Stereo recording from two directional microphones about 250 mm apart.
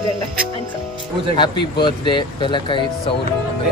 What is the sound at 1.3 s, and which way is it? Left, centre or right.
Speech, centre.